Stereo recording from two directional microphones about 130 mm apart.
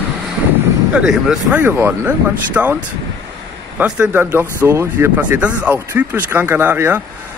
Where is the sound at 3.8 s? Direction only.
15° right (ahead or behind).